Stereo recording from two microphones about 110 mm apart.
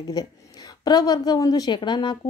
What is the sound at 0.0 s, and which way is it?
A woman's voice, 35° left (ahead or behind).